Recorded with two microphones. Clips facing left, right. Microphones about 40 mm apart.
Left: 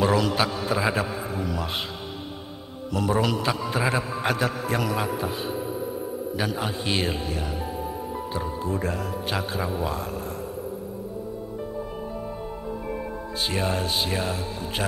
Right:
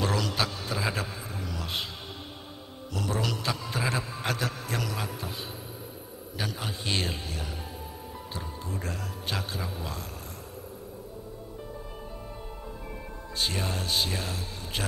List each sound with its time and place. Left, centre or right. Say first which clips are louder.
0.0 s a sound: left 7 dB; centre
2.9 s a man's voice: left 7 dB; centre
12.9 s music: left 7 dB; centre